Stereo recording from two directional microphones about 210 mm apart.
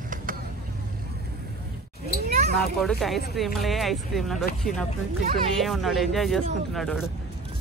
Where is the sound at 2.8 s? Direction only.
Centre (ahead or behind).